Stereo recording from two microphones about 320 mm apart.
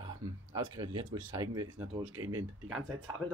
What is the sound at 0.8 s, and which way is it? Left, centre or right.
Speech, centre.